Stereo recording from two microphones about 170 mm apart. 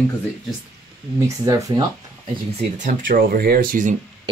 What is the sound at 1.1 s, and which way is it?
Speech, 15° right (ahead or behind).